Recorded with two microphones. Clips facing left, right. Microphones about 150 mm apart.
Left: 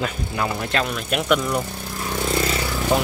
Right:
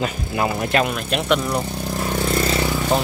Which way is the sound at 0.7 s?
10° right (ahead or behind).